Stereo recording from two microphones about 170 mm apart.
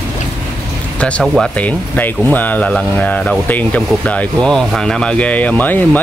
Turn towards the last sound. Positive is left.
turn(degrees=10)  # may be behind; listen again after turning